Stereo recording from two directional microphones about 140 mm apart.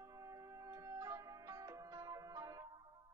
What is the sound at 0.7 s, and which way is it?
Music, 25° right (ahead or behind).